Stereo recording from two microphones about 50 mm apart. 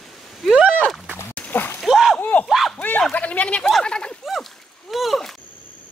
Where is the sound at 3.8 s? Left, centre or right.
Centre.